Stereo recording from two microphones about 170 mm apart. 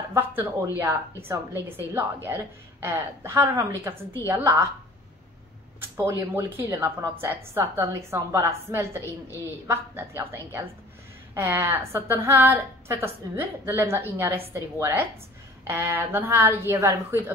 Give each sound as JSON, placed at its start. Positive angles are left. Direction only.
{"t": 0.1, "sound": "a woman's voice", "side_deg": -15}
{"t": 5.8, "sound": "a woman's voice", "side_deg": -15}